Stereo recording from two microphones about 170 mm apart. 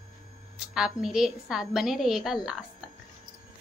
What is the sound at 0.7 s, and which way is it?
A woman's voice, 5° right (ahead or behind).